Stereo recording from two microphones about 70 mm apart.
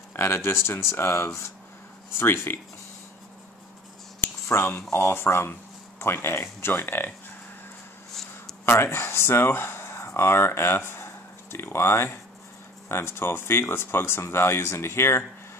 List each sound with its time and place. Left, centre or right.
0.1 s speech: left
4.5 s speech: left
8.1 s a sound: centre
8.6 s speech: left